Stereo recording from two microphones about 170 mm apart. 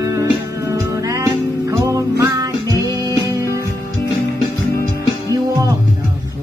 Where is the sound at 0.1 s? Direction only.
20° right (ahead or behind).